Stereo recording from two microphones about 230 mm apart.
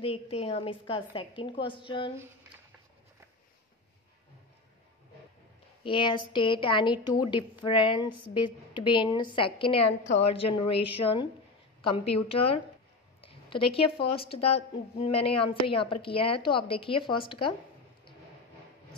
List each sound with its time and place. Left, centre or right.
0.0 s a woman's voice: left
5.9 s a woman's voice: left